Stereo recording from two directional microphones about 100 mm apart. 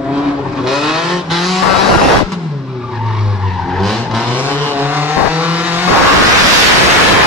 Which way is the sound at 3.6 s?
Centre (ahead or behind).